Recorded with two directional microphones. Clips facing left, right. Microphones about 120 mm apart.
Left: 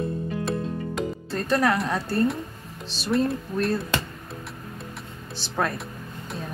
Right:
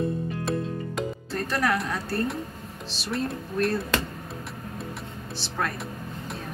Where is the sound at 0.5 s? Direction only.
Centre (ahead or behind).